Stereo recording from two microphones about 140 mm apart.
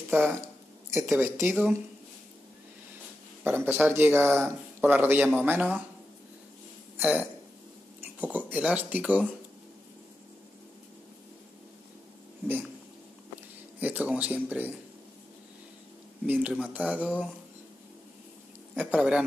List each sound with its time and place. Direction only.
0.1 s speech: 15° right (ahead or behind)
3.4 s speech: 15° right (ahead or behind)
7.0 s speech: 10° right (ahead or behind)
13.7 s speech: 10° right (ahead or behind)
16.3 s speech: 10° right (ahead or behind)
18.8 s speech: 10° right (ahead or behind)